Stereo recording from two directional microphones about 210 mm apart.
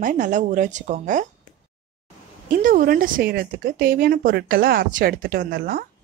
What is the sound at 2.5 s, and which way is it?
A woman's voice, 40° right (ahead or behind).